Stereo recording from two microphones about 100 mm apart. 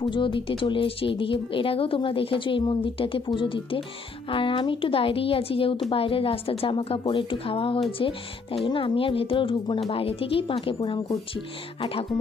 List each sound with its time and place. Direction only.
0.0 s a woman's voice: 55° left (ahead or behind)